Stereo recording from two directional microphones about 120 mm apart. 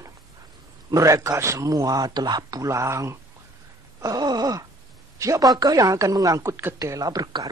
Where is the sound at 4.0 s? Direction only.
30° right (ahead or behind).